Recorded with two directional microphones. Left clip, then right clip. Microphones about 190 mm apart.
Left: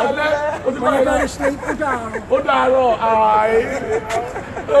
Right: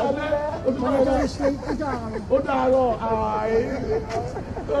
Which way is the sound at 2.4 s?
20° left (ahead or behind).